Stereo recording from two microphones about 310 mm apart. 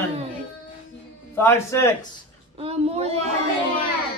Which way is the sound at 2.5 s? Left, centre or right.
Centre.